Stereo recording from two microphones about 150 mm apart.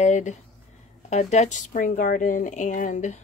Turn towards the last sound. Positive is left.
turn(degrees=55)  # may be behind; listen again after turning